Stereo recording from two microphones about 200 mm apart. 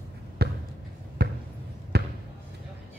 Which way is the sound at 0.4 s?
50° right (ahead or behind).